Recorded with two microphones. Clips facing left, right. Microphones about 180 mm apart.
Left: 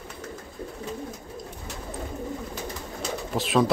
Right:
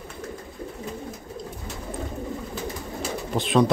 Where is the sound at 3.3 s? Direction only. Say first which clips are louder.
Right 2 dB; centre (ahead or behind).